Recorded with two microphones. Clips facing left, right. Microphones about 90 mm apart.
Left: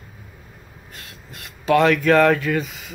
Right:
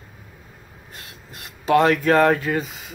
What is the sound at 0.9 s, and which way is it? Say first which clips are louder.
Rub: even; 25° right (ahead or behind).